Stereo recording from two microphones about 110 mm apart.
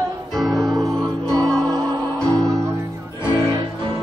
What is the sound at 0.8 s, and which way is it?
Music, 30° right (ahead or behind).